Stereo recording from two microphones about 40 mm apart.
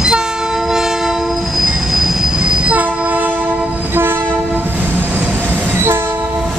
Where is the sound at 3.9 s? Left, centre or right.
Right.